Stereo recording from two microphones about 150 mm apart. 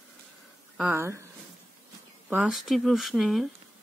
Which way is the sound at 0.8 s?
15° right (ahead or behind).